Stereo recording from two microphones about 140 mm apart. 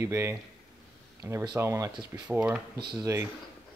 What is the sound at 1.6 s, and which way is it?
Speech, 20° right (ahead or behind).